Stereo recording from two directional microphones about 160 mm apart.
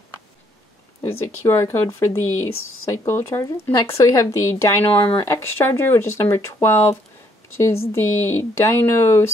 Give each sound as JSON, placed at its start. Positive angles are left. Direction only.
{"t": 1.0, "sound": "speech", "side_deg": 15}